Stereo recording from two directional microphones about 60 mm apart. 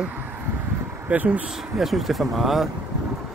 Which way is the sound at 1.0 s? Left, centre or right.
Right.